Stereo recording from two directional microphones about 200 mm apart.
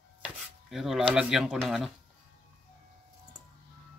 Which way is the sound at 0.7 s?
Centre (ahead or behind).